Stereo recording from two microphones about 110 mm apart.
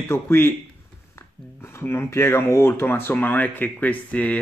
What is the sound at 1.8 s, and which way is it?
A man's voice, 20° left (ahead or behind).